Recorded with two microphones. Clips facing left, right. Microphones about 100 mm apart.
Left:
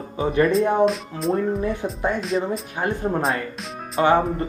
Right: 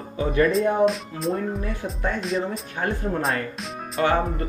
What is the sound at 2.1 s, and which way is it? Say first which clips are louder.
Speech: left 2 dB; centre (ahead or behind).